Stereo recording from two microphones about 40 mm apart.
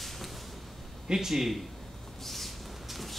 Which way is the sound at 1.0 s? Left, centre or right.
Centre.